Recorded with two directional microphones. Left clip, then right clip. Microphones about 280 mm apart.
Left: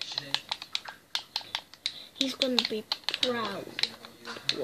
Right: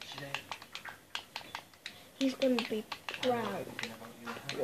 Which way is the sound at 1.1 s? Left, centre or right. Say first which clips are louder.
Left 9 dB; left.